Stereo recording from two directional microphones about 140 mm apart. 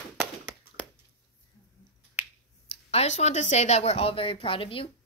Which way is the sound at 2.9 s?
55° left (ahead or behind).